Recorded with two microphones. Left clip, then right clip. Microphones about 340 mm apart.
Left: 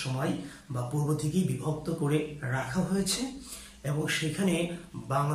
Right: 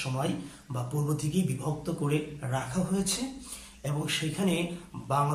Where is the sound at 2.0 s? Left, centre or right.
Centre.